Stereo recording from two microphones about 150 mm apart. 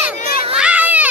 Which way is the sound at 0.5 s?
10° right (ahead or behind).